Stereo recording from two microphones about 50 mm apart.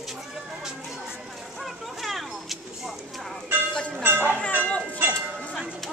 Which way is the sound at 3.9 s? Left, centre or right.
Right.